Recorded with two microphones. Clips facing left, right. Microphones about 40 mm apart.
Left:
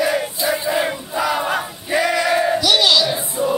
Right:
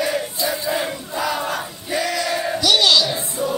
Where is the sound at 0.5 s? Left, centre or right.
Left.